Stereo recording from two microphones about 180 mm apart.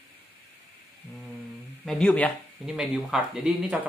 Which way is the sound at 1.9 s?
5° left (ahead or behind).